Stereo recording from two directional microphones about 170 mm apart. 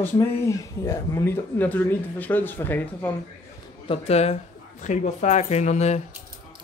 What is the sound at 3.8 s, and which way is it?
Speech, 40° left (ahead or behind).